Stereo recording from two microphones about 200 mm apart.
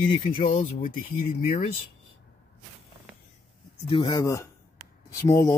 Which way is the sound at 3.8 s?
25° left (ahead or behind).